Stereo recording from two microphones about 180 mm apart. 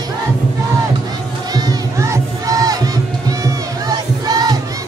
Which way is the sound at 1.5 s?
20° right (ahead or behind).